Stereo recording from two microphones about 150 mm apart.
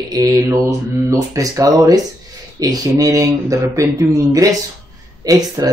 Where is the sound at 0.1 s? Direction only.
20° right (ahead or behind).